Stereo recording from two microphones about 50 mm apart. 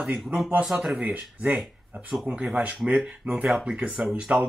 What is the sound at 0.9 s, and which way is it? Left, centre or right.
Speech, right.